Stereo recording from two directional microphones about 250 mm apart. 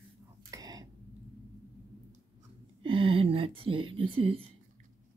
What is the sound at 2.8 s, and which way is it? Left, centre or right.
Whispering, right.